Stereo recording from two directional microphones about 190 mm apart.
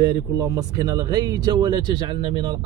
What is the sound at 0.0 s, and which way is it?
Speech, 20° right (ahead or behind).